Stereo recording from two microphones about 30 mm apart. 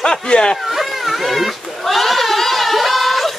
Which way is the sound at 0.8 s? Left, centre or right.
Centre.